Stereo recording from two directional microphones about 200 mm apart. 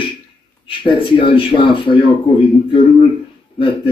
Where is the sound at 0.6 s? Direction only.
25° left (ahead or behind).